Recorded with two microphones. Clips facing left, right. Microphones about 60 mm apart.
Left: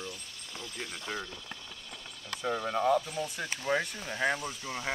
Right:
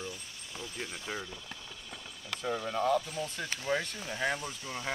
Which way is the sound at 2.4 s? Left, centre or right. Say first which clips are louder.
Left 2 dB; centre.